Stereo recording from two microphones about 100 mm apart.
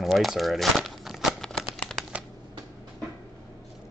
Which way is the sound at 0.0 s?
Centre (ahead or behind).